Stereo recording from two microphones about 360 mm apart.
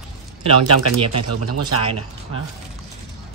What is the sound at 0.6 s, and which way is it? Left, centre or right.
Speech, right.